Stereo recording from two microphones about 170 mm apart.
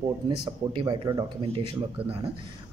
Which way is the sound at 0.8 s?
25° right (ahead or behind).